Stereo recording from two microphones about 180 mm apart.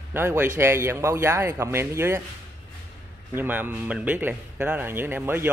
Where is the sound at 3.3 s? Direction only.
10° right (ahead or behind).